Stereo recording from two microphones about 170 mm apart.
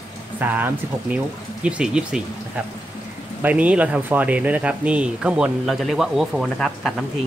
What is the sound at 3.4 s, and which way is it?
Speech, 10° right (ahead or behind).